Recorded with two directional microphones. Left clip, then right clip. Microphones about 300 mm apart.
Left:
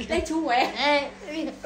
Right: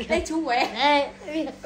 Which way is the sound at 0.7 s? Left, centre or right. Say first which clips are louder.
Right 2 dB; right.